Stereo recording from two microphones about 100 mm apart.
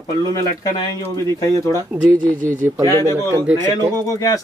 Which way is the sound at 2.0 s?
30° right (ahead or behind).